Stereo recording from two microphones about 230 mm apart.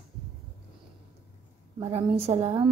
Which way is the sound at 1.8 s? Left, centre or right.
Right.